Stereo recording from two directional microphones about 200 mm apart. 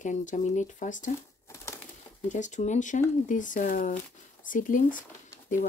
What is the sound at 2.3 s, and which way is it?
Speech, 35° left (ahead or behind).